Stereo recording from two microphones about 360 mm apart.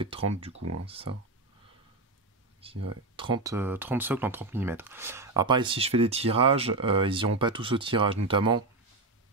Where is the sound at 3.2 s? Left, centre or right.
Centre.